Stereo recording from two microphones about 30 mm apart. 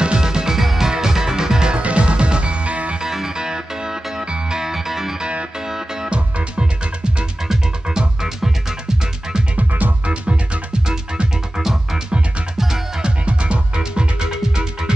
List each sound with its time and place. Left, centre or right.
0.0 s music: right
0.6 s music: centre
1.8 s music: right
3.0 s music: centre
6.0 s music: right
10.0 s music: right
10.9 s music: right
13.0 s music: right
13.7 s music: right